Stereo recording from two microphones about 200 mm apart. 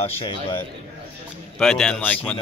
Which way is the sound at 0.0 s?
25° left (ahead or behind).